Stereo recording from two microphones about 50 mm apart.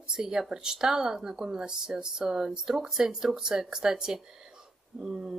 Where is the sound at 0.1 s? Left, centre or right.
Centre.